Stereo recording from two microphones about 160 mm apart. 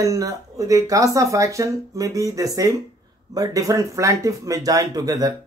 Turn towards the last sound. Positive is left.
turn(degrees=-20)  # may be behind; listen again after turning